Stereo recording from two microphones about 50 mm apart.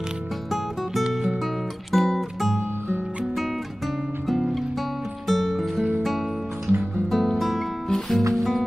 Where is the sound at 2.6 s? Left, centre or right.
Right.